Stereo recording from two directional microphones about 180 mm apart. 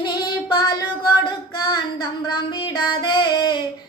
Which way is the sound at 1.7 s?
25° left (ahead or behind).